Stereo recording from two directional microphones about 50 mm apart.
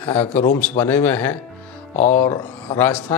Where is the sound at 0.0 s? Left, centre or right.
Left.